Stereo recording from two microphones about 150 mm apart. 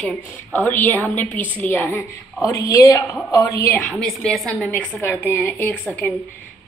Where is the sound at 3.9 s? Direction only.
Centre (ahead or behind).